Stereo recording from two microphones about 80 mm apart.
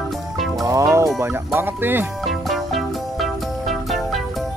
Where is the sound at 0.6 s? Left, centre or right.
Right.